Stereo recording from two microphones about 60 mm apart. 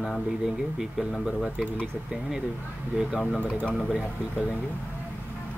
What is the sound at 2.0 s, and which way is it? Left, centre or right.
Speech, centre.